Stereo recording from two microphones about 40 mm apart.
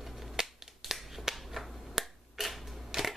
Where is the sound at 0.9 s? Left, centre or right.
Centre.